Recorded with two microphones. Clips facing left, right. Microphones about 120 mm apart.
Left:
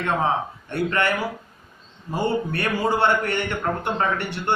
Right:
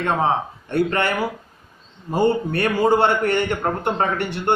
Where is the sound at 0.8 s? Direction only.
40° right (ahead or behind).